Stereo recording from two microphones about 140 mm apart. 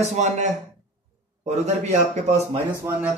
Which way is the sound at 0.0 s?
55° right (ahead or behind).